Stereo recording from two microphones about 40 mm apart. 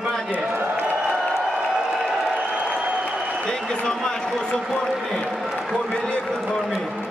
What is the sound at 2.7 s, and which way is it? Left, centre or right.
Applause, right.